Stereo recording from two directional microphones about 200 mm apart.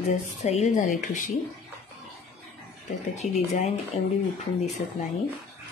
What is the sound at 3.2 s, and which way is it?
Speech, 30° left (ahead or behind).